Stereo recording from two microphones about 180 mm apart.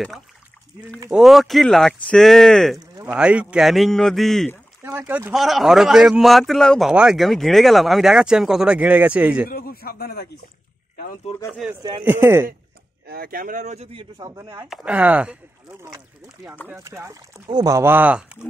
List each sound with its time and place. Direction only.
1.1 s a man's voice: centre (ahead or behind)
4.8 s a man's voice: 10° right (ahead or behind)
9.5 s a man's voice: 55° left (ahead or behind)
11.3 s speech: 35° left (ahead or behind)
12.0 s speech: 10° right (ahead or behind)
13.0 s speech: 55° right (ahead or behind); by 14.0 s 35° right (ahead or behind)
14.2 s speech: 20° right (ahead or behind)
14.7 s speech: 5° right (ahead or behind)
16.6 s speech: 15° right (ahead or behind)